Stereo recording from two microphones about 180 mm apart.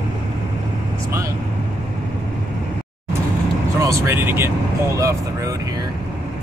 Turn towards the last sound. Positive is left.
turn(degrees=-15)  # may be behind; listen again after turning